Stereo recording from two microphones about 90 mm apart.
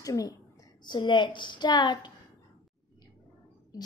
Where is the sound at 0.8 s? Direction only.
60° left (ahead or behind).